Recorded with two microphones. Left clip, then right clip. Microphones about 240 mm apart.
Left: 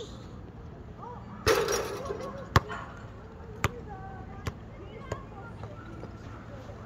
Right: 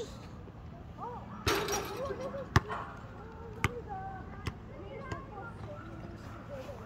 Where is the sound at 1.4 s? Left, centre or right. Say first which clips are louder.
Left 6 dB; centre.